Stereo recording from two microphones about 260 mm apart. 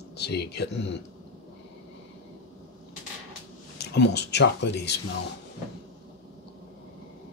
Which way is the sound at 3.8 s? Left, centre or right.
Left.